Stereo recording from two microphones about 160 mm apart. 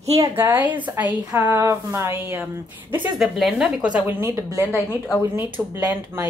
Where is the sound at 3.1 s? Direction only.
Centre (ahead or behind).